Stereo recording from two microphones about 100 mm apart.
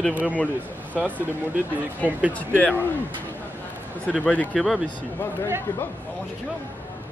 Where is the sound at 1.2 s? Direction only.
15° right (ahead or behind).